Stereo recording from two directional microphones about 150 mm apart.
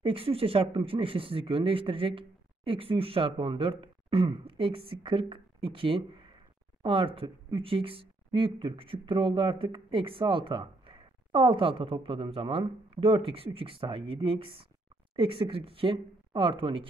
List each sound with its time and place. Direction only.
0.0 s speech: 40° right (ahead or behind)